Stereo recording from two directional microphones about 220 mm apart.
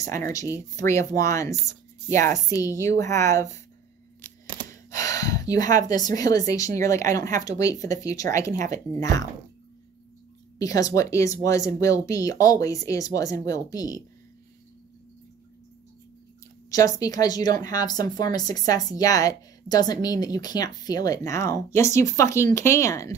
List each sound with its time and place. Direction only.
0.0 s a woman's voice: 15° left (ahead or behind)
4.2 s camera: 10° left (ahead or behind)
4.6 s gasp: 15° left (ahead or behind)
6.0 s a woman's voice: 15° left (ahead or behind)
10.6 s a woman's voice: 15° left (ahead or behind)
16.7 s a woman's voice: 15° left (ahead or behind)